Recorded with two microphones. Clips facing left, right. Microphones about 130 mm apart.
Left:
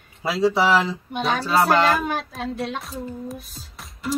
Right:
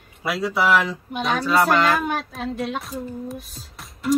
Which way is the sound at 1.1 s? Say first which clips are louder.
Right 2 dB; centre (ahead or behind).